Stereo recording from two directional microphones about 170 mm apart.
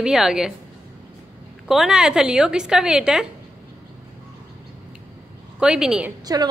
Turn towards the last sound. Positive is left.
turn(degrees=-20)  # may be behind; listen again after turning